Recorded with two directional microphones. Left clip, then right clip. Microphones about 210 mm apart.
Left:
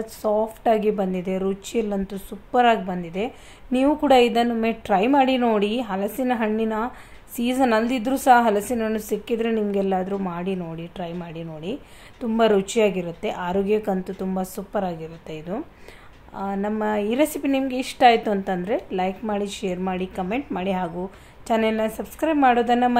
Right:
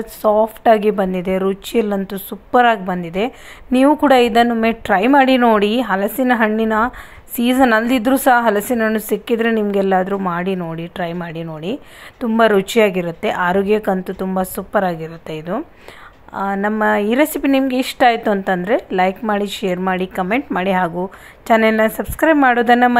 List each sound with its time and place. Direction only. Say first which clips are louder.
0.0 s a woman's voice: right 8 dB; 15° right (ahead or behind)